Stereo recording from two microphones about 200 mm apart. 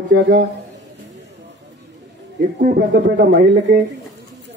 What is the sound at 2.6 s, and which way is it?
Speech, 40° right (ahead or behind).